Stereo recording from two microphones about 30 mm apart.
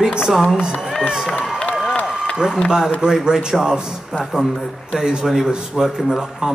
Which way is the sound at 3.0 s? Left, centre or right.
Right.